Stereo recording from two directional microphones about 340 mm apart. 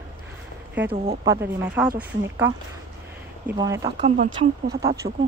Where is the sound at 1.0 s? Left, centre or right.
Centre.